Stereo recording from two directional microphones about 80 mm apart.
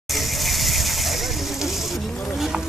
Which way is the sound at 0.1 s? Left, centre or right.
Centre.